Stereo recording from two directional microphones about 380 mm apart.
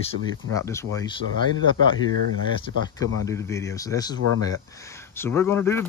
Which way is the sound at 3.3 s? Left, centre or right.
Centre.